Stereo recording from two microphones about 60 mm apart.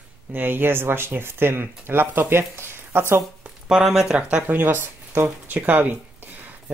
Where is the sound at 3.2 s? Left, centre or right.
Centre.